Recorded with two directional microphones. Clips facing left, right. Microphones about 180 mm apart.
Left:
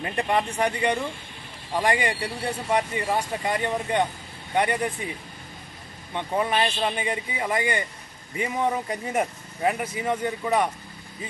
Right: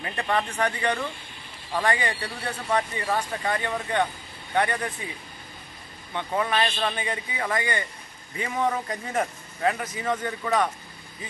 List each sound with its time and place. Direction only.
0.0 s speech: 25° left (ahead or behind)
6.1 s speech: 20° left (ahead or behind)